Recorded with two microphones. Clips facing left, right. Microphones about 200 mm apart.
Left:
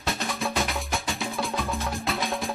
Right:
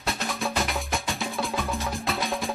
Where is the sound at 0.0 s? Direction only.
Centre (ahead or behind).